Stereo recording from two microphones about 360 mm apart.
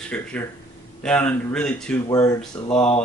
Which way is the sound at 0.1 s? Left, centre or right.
Centre.